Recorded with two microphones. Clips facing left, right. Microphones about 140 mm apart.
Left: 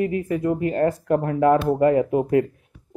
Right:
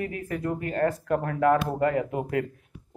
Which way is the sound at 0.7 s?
25° left (ahead or behind).